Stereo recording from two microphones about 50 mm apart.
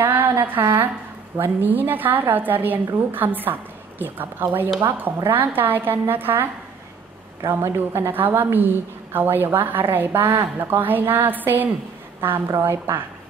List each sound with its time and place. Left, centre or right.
0.0 s a sound: right
1.4 s a woman's voice: right
8.1 s a woman's voice: right